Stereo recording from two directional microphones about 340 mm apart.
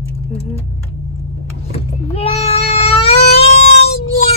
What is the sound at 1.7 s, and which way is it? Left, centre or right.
Baby cry, centre.